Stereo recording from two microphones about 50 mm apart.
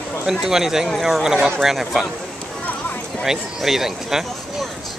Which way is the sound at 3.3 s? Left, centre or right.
Centre.